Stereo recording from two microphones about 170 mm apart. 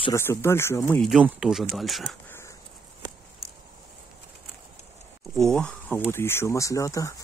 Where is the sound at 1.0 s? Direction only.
Centre (ahead or behind).